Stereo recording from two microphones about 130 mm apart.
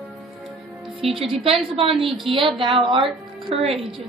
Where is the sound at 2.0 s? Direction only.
Centre (ahead or behind).